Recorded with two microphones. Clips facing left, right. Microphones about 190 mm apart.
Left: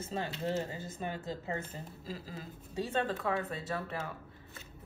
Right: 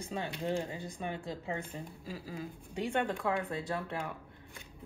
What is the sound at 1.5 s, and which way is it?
Speech, 15° right (ahead or behind).